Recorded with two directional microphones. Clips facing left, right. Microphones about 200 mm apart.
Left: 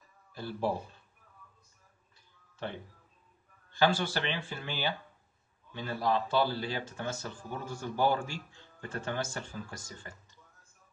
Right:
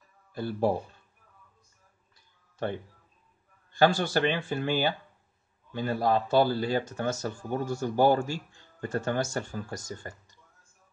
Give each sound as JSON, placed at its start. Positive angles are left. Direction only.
{"t": 0.3, "sound": "speech", "side_deg": -50}
{"t": 3.7, "sound": "a man's voice", "side_deg": -45}